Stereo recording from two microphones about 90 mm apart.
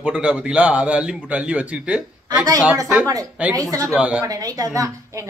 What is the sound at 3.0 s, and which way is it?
Speech, 45° right (ahead or behind).